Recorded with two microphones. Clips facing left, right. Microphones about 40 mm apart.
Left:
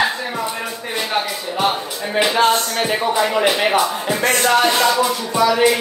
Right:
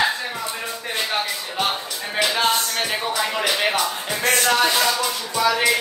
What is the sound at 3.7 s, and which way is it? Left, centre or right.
Music, centre.